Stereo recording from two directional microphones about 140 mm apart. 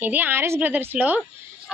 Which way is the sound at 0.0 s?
15° right (ahead or behind).